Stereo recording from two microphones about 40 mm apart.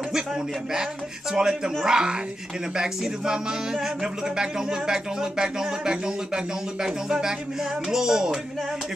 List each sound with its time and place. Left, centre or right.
1.3 s music: centre
1.9 s speech: centre
2.7 s music: centre